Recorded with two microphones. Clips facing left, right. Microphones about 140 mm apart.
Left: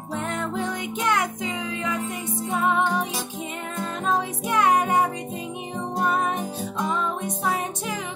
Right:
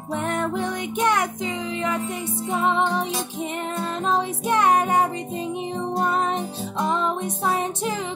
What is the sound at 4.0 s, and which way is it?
Music, 25° right (ahead or behind).